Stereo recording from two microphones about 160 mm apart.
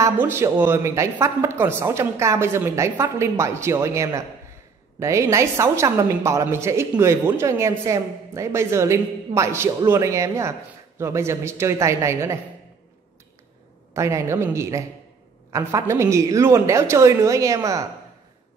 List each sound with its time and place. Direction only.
0.0 s a woman's voice: 15° right (ahead or behind)
13.9 s a woman's voice: 20° right (ahead or behind)